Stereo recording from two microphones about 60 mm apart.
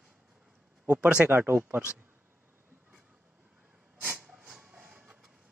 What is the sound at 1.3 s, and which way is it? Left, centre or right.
Speech, right.